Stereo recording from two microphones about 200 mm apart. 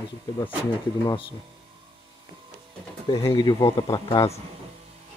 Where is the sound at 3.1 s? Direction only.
20° left (ahead or behind).